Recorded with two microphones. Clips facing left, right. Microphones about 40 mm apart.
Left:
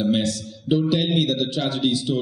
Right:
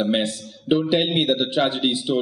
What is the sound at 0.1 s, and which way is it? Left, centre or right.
A man's voice, right.